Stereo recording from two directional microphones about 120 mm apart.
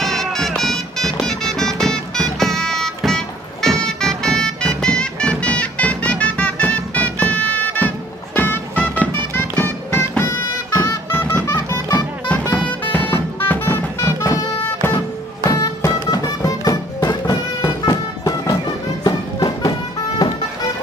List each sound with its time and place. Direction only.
0.0 s music: 5° left (ahead or behind); by 10.3 s 20° left (ahead or behind)
10.7 s music: 30° left (ahead or behind)
11.1 s music: 15° left (ahead or behind)
12.5 s music: 15° left (ahead or behind); by 19.7 s 35° left (ahead or behind)